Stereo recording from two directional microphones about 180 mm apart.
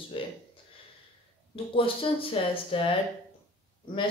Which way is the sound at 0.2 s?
30° left (ahead or behind).